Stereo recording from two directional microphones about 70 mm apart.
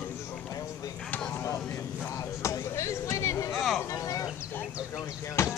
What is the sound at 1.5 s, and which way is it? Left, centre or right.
Vehicle, left.